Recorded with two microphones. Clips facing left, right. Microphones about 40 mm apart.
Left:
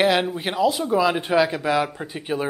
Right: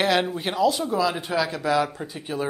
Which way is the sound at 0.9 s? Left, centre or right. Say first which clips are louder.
Left 5 dB; left.